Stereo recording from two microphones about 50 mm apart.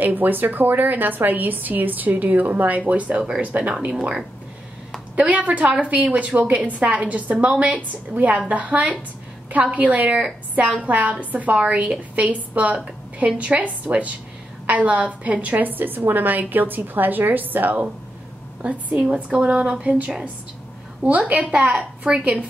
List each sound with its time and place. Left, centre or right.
0.0 s a woman's voice: right
3.9 s speech: centre
5.1 s a woman's voice: right
18.6 s a woman's voice: right
21.0 s a woman's voice: right
21.7 s a woman's voice: centre